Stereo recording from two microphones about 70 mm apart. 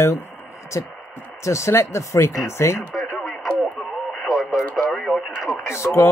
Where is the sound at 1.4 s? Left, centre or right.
Left.